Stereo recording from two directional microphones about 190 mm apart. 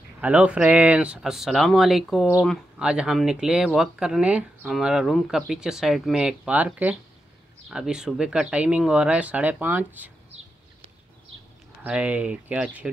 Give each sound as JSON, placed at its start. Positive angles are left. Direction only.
{"t": 0.2, "sound": "speech", "side_deg": -5}
{"t": 11.8, "sound": "speech", "side_deg": -5}